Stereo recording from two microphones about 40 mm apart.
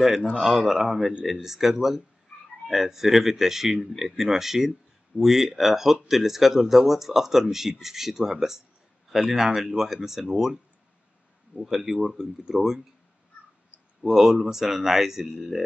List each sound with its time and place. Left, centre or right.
0.0 s speech: centre
0.9 s speech: right
1.2 s speech: centre
14.0 s speech: centre